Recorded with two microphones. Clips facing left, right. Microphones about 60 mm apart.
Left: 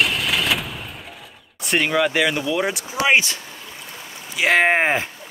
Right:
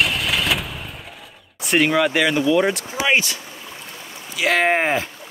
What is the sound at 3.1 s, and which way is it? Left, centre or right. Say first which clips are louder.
Speech: left 2 dB; left.